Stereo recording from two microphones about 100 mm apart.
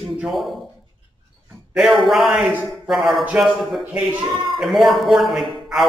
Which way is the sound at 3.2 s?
10° right (ahead or behind).